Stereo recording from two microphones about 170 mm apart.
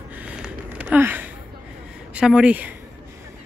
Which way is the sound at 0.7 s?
10° right (ahead or behind).